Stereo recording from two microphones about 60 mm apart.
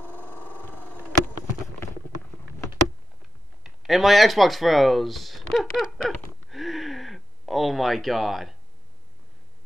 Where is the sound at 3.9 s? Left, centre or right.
Centre.